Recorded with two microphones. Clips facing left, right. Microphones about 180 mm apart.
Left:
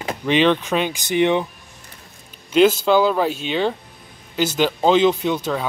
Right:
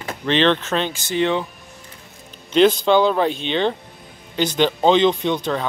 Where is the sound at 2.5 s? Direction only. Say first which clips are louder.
Even; 5° left (ahead or behind).